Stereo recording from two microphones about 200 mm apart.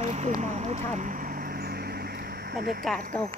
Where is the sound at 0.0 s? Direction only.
35° right (ahead or behind).